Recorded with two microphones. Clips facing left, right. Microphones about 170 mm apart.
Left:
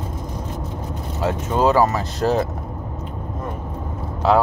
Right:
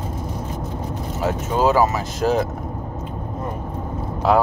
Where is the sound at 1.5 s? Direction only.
5° right (ahead or behind).